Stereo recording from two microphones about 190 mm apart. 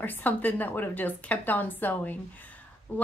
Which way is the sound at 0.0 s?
10° left (ahead or behind).